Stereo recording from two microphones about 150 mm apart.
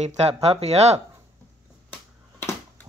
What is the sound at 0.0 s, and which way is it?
Speech, 45° right (ahead or behind).